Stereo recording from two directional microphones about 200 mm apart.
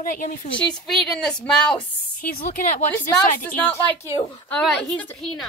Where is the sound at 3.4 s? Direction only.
10° left (ahead or behind).